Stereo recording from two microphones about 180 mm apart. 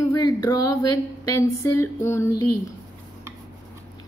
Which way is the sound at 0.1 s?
20° left (ahead or behind).